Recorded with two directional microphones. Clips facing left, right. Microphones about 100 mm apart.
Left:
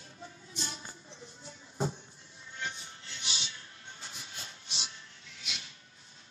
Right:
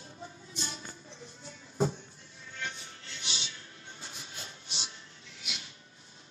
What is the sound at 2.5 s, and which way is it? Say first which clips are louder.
Music: even; 25° left (ahead or behind).